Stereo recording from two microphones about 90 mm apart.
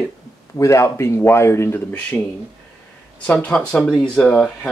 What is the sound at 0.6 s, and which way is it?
Speech, 30° left (ahead or behind).